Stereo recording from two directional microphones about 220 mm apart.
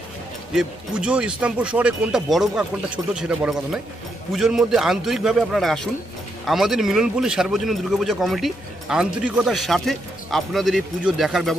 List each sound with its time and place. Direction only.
0.6 s speech: 5° right (ahead or behind)